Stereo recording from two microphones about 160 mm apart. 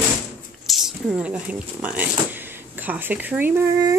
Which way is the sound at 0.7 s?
Centre (ahead or behind).